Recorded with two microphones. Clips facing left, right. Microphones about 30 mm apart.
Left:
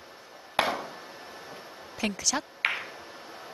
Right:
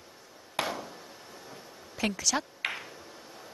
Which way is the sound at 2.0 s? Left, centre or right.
Centre.